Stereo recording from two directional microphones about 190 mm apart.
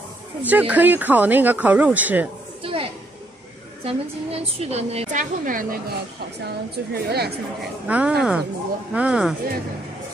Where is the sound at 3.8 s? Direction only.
30° right (ahead or behind); by 5.8 s 45° right (ahead or behind).